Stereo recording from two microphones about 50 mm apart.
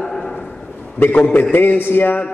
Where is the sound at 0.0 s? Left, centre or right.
Centre.